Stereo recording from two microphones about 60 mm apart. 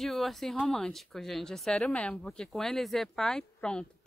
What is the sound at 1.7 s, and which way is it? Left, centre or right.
Speech, centre.